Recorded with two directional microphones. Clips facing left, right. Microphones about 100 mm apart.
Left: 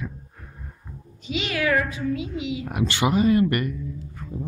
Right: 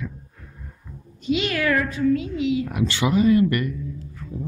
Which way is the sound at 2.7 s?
60° left (ahead or behind).